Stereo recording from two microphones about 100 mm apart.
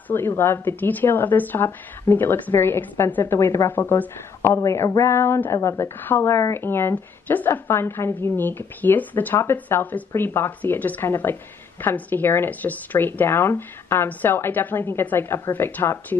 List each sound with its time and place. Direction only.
0.1 s a woman's voice: 25° left (ahead or behind)
4.6 s a woman's voice: 35° left (ahead or behind); by 16.2 s 20° left (ahead or behind)